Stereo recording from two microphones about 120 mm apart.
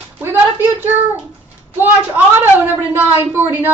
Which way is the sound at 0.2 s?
15° right (ahead or behind).